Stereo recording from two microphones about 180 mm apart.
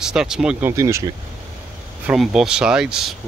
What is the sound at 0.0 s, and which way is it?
Speech, 5° right (ahead or behind).